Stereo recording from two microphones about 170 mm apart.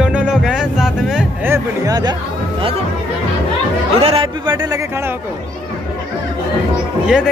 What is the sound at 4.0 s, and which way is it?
Speech, 35° right (ahead or behind).